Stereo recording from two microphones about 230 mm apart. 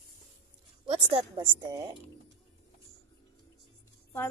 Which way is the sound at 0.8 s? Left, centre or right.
Right.